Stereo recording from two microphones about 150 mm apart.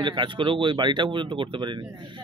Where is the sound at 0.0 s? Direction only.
30° right (ahead or behind).